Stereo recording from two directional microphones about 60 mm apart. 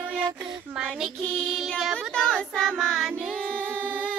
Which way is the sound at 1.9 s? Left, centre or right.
Centre.